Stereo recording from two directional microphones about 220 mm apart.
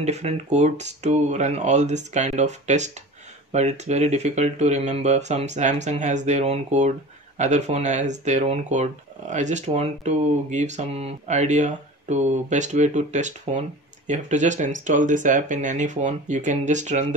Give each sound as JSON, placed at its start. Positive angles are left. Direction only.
{"t": 0.0, "sound": "speech", "side_deg": -30}